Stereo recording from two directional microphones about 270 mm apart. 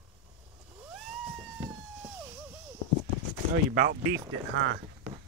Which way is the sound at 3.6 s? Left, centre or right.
Right.